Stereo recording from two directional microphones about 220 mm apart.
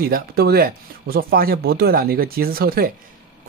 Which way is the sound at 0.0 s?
45° right (ahead or behind).